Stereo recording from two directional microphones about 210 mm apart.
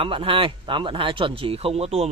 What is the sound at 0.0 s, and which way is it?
Speech, 25° right (ahead or behind).